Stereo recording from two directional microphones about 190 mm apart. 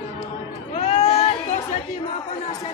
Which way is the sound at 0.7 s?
35° left (ahead or behind).